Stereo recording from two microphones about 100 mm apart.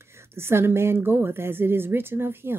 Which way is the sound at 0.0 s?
25° right (ahead or behind).